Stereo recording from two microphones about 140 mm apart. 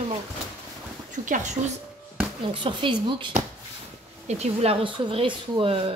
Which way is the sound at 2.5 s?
40° right (ahead or behind).